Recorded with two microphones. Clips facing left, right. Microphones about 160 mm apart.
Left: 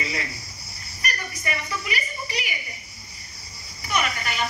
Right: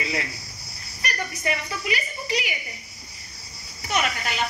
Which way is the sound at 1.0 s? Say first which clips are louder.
Right 3 dB; 75° right (ahead or behind).